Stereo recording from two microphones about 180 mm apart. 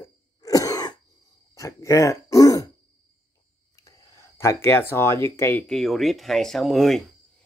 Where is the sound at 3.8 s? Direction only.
15° left (ahead or behind).